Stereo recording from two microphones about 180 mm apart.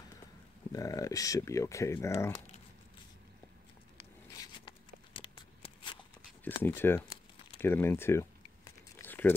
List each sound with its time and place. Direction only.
0.7 s speech: 20° left (ahead or behind)
4.4 s a sound: 25° left (ahead or behind)
6.4 s speech: 10° left (ahead or behind)
9.0 s crumpling: 10° left (ahead or behind)